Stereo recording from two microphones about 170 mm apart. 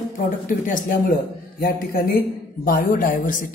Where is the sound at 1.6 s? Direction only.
65° left (ahead or behind).